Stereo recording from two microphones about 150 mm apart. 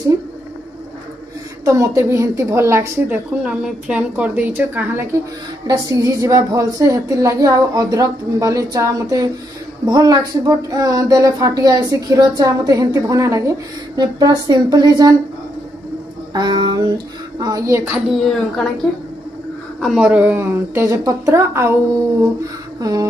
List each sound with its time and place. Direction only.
1.6 s speech: 20° right (ahead or behind)
16.3 s speech: 30° right (ahead or behind)
17.9 s speech: centre (ahead or behind)
19.8 s speech: 5° right (ahead or behind)
22.8 s speech: 25° right (ahead or behind)